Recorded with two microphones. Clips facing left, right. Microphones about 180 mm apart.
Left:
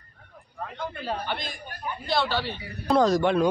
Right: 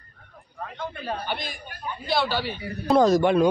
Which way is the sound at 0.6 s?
10° left (ahead or behind).